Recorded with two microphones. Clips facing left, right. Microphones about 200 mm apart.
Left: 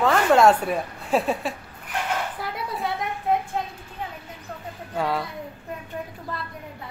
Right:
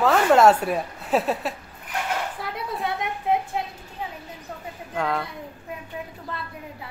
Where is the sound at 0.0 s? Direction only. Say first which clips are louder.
Right 1 dB; 5° right (ahead or behind).